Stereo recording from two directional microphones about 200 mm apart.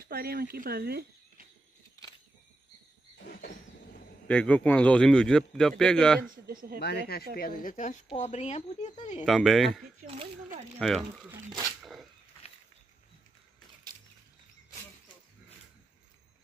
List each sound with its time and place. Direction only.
0.1 s speech: 50° right (ahead or behind)
3.2 s a sound: 50° left (ahead or behind)
4.3 s speech: 5° left (ahead or behind)
6.4 s speech: 45° right (ahead or behind)
6.8 s speech: 55° left (ahead or behind); by 9.2 s 35° left (ahead or behind)
9.2 s speech: centre (ahead or behind)
10.8 s speech: centre (ahead or behind)
11.8 s a sound: centre (ahead or behind)